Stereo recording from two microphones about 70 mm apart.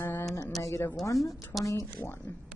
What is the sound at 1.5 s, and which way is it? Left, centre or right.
Speech, centre.